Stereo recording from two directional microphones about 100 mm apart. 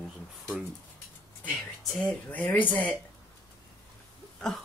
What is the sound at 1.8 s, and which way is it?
Speech, 15° left (ahead or behind).